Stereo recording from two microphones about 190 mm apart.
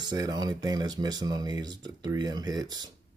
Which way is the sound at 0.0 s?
20° right (ahead or behind).